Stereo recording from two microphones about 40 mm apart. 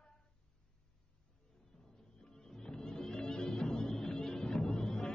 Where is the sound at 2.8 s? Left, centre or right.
Centre.